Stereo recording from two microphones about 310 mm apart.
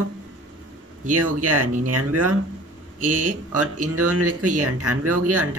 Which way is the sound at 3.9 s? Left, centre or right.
Right.